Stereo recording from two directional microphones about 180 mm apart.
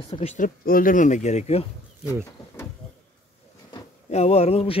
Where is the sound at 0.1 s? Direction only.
35° left (ahead or behind).